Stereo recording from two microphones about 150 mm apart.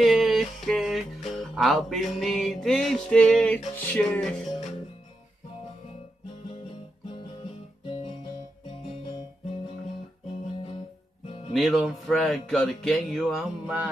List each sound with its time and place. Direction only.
0.0 s speech: centre (ahead or behind)
11.2 s music: 40° left (ahead or behind)
11.5 s speech: centre (ahead or behind)